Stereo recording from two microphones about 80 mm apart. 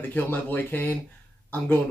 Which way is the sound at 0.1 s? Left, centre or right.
Left.